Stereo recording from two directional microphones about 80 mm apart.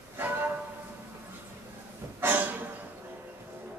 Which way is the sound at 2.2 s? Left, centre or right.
Right.